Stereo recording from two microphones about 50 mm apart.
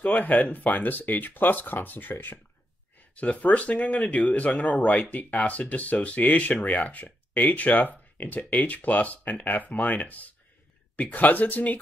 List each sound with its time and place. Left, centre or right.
0.0 s speech: left